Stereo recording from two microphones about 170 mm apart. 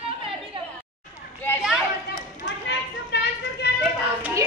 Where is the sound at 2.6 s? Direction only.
80° left.